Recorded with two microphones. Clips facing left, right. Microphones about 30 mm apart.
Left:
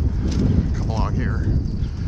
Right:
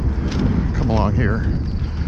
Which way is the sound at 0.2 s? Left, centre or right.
Right.